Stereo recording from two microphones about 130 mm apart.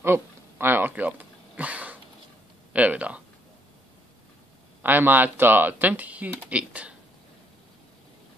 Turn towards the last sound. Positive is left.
turn(degrees=-10)  # may be behind; listen again after turning